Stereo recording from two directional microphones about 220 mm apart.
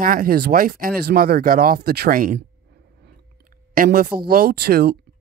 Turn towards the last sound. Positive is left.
turn(degrees=-45)  # may be behind; listen again after turning